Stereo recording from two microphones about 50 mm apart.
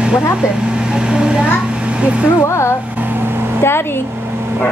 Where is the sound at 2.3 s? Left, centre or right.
Left.